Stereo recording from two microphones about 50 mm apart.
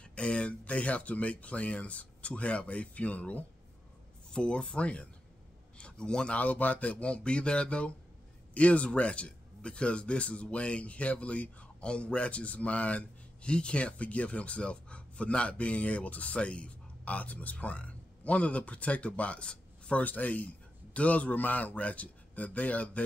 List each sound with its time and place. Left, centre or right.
0.0 s speech: left
4.3 s speech: centre
6.4 s speech: left
20.0 s a man's voice: left